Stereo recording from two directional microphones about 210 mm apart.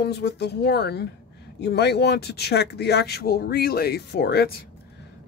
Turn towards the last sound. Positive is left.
turn(degrees=50)  # may be behind; listen again after turning